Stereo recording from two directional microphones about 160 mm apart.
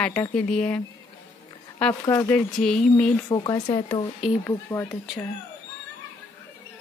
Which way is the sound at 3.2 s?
25° left (ahead or behind).